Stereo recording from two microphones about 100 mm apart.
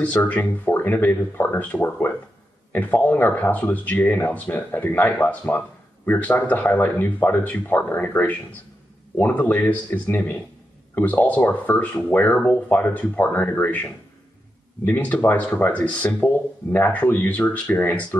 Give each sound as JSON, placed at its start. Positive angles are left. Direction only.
{"t": 0.0, "sound": "speech", "side_deg": 15}